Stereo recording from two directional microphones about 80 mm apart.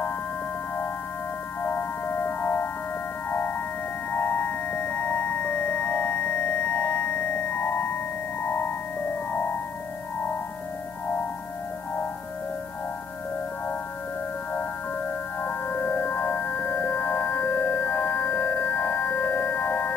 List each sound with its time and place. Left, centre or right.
1.6 s music: left
14.5 s music: left